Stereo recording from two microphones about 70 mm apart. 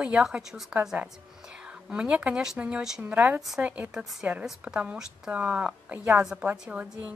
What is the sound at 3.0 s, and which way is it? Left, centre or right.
Speech, right.